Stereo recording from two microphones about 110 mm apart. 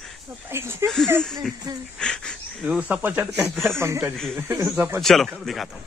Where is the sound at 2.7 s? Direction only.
10° right (ahead or behind).